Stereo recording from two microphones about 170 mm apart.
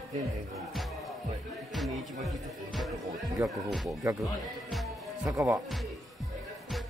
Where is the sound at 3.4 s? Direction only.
Centre (ahead or behind).